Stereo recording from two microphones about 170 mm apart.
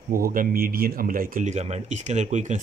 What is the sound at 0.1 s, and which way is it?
Speech, 55° right (ahead or behind).